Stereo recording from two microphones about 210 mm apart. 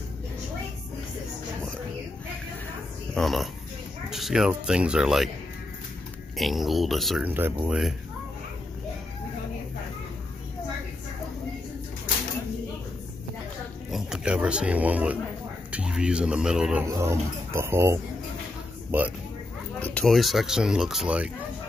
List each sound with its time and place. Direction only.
3.2 s speech: centre (ahead or behind)
6.3 s speech: centre (ahead or behind)
13.8 s speech: centre (ahead or behind)
19.8 s speech: 5° left (ahead or behind)